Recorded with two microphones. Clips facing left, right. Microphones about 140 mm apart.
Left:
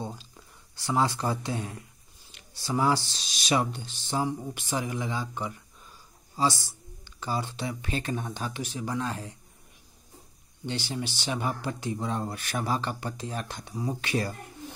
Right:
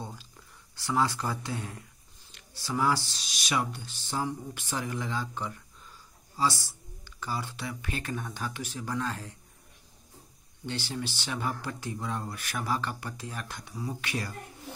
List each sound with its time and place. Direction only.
0.0 s a sound: 20° left (ahead or behind)
0.7 s speech: 20° left (ahead or behind)
7.1 s speech: 25° left (ahead or behind)
10.6 s speech: 20° left (ahead or behind)